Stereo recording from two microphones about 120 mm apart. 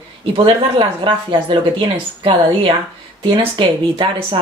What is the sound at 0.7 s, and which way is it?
Speech, 45° right (ahead or behind).